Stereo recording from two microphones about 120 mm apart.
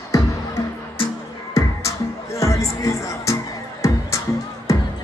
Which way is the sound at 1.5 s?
25° left (ahead or behind).